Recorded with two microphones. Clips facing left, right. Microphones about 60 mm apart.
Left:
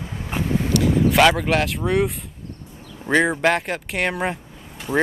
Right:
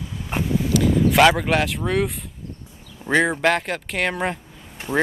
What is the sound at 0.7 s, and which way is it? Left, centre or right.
Speech, centre.